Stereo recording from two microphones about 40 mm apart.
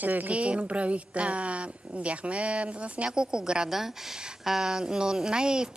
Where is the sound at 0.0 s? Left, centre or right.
Right.